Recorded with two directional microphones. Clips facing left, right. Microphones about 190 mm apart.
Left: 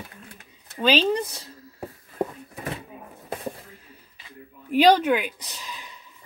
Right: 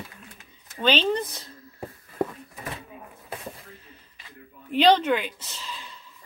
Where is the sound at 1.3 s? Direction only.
10° left (ahead or behind).